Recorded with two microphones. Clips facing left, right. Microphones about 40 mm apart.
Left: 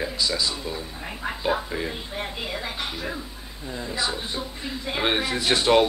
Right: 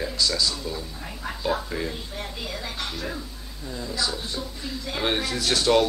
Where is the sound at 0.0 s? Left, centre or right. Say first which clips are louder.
Even; centre.